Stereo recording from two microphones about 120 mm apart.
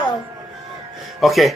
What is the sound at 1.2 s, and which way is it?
Speech, centre (ahead or behind).